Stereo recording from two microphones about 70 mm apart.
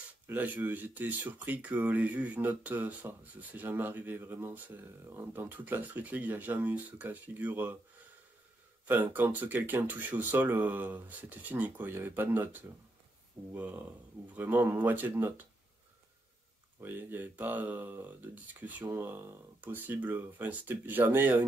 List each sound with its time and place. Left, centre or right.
0.3 s speech: right
8.8 s speech: right
16.8 s speech: right